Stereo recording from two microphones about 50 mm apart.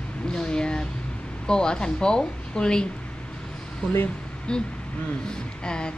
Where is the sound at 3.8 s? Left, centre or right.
Centre.